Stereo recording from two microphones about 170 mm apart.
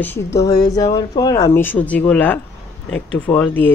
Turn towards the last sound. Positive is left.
turn(degrees=10)  # may be behind; listen again after turning